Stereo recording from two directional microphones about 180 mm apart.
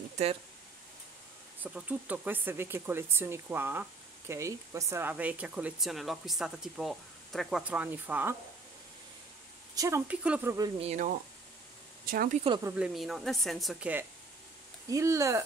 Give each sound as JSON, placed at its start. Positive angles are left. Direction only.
{"t": 1.6, "sound": "speech", "side_deg": -5}
{"t": 9.8, "sound": "speech", "side_deg": -15}
{"t": 10.8, "sound": "speech", "side_deg": -40}
{"t": 12.1, "sound": "speech", "side_deg": -50}
{"t": 12.4, "sound": "speech", "side_deg": -20}
{"t": 12.7, "sound": "a woman's voice", "side_deg": 0}
{"t": 14.9, "sound": "speech", "side_deg": -15}